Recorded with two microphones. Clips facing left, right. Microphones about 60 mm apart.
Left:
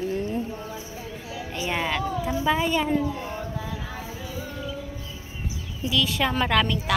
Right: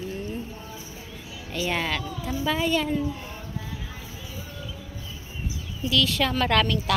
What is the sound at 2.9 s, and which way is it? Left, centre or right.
Speech, left.